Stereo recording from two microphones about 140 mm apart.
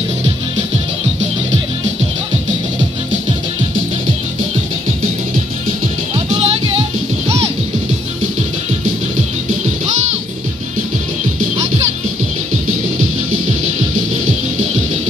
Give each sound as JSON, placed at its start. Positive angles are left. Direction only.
{"t": 6.1, "sound": "music", "side_deg": -45}